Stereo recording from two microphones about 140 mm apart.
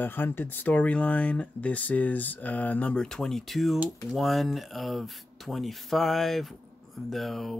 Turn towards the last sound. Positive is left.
turn(degrees=0)  # may be behind; listen again after turning